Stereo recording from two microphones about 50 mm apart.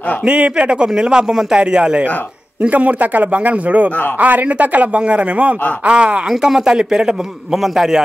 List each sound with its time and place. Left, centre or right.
0.2 s a man's voice: right
2.7 s a man's voice: right; by 8.0 s centre